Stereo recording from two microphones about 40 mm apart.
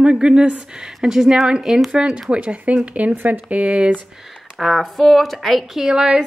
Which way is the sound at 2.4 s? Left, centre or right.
Right.